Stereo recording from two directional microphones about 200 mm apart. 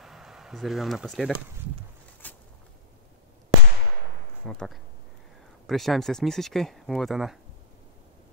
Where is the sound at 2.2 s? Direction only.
10° left (ahead or behind).